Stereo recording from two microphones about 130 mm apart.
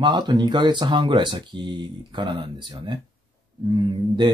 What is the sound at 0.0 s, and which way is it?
Speech, 35° right (ahead or behind).